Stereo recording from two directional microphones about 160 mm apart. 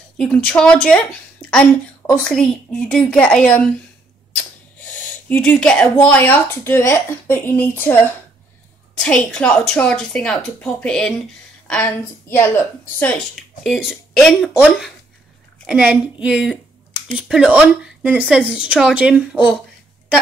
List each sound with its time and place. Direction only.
0.2 s a woman's voice: 5° left (ahead or behind)
4.7 s gasp: 10° left (ahead or behind)
5.9 s a woman's voice: 10° left (ahead or behind)
13.8 s a woman's voice: centre (ahead or behind)